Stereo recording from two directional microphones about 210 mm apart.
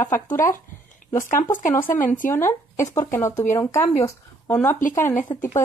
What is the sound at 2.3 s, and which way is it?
Speech, 15° left (ahead or behind).